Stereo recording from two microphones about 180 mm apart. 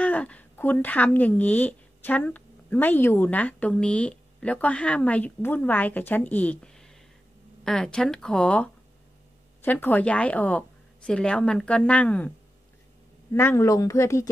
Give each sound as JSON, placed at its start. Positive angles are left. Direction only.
{"t": 0.0, "sound": "a woman's voice", "side_deg": 10}